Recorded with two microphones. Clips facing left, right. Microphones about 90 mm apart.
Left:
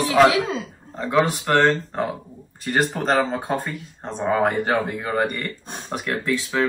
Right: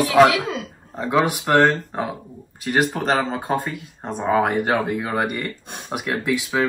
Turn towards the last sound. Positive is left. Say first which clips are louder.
# right 1 dB
turn(degrees=-10)  # may be behind; listen again after turning